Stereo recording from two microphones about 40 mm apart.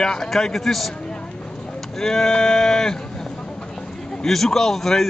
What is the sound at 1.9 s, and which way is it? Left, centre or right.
Speech, centre.